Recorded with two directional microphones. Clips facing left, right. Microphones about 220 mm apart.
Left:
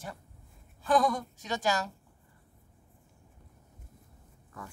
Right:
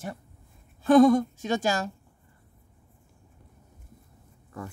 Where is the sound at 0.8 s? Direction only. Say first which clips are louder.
Right 10 dB; 25° right (ahead or behind).